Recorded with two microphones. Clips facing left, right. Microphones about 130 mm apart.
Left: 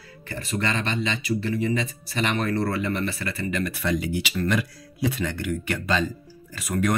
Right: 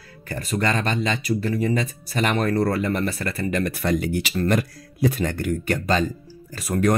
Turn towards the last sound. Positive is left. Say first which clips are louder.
# right 4 dB
turn(degrees=-35)  # may be behind; listen again after turning